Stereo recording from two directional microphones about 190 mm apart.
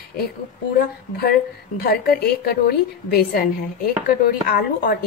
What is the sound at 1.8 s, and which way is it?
A woman's voice, 55° left (ahead or behind).